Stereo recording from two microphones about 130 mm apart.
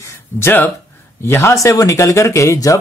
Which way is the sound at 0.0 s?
20° left (ahead or behind).